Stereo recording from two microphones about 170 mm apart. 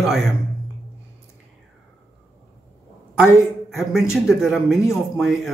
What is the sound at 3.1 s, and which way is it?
A woman's voice, centre (ahead or behind).